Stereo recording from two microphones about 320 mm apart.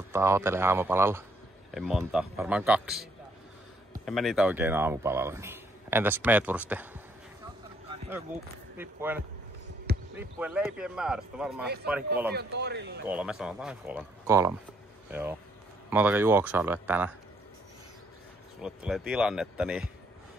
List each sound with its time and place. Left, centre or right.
0.1 s a man's voice: centre
8.3 s speech: centre
12.3 s speech: right
13.0 s speech: centre
18.6 s speech: centre